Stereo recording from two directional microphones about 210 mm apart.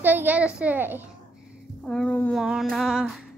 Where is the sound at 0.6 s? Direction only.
10° right (ahead or behind).